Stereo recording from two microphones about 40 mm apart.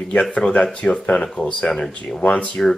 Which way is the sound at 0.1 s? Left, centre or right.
Left.